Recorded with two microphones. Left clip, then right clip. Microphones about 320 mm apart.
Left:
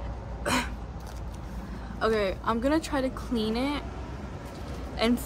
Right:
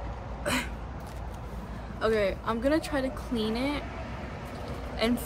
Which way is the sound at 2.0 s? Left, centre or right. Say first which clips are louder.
Even; centre.